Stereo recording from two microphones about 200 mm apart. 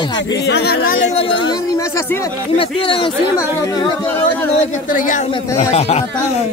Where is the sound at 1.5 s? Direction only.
15° left (ahead or behind).